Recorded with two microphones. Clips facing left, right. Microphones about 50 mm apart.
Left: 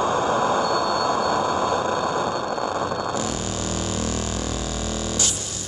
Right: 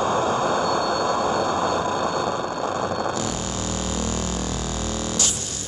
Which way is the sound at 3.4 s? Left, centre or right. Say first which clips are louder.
Left 1 dB; centre.